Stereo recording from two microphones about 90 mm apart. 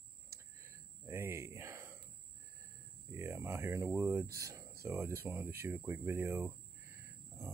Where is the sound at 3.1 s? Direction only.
25° right (ahead or behind).